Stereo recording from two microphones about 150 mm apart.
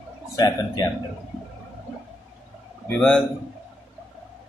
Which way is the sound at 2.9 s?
5° left (ahead or behind).